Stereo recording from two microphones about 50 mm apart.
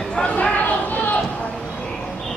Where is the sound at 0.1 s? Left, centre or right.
Centre.